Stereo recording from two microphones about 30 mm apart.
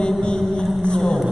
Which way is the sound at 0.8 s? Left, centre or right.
Left.